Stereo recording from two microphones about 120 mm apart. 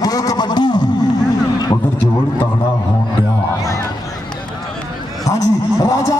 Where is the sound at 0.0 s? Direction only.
30° left (ahead or behind).